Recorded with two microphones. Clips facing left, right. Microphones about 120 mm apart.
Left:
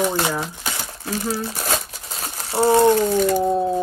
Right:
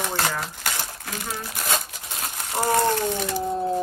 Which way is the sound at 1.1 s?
30° left (ahead or behind).